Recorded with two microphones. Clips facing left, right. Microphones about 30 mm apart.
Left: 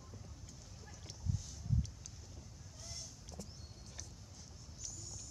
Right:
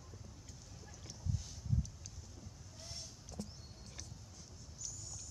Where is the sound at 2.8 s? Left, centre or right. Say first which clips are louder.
Even; right.